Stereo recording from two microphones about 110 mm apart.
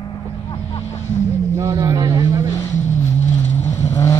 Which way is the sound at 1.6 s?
40° right (ahead or behind).